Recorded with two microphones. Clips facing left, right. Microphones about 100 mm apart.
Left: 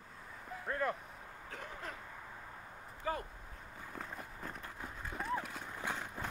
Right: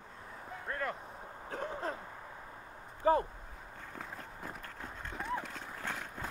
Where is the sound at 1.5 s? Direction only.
35° right (ahead or behind).